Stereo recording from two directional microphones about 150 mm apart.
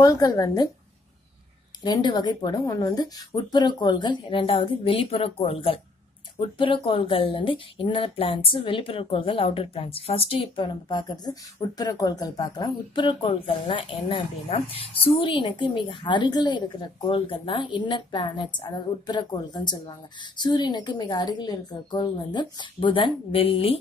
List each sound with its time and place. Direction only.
0.0 s speech: 25° left (ahead or behind)
1.8 s a woman's voice: 30° left (ahead or behind)